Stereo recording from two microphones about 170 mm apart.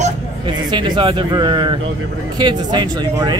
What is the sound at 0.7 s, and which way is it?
Speech, 30° right (ahead or behind).